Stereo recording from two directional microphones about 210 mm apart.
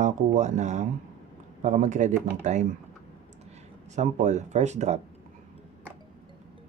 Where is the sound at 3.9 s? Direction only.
35° right (ahead or behind).